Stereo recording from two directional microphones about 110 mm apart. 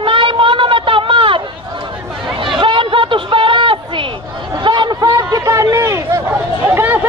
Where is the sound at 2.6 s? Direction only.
50° right (ahead or behind).